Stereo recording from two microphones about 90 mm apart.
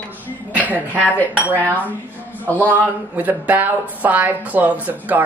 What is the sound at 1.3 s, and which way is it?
Speech, 15° right (ahead or behind).